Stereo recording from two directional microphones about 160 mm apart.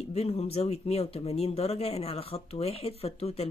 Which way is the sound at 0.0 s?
40° left (ahead or behind).